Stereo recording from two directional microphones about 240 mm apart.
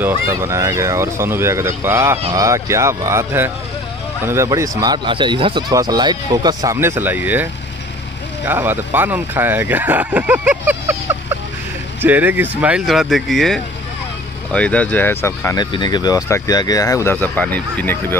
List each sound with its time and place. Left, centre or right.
0.0 s speech: centre
8.5 s speech: centre